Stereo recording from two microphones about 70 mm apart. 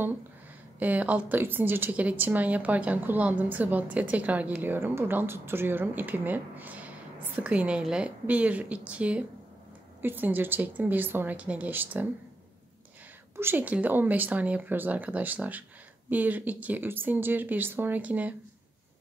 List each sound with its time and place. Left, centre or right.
0.7 s a woman's voice: right
13.4 s a woman's voice: right